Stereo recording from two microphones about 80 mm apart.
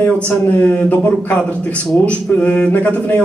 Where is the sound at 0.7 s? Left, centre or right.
Centre.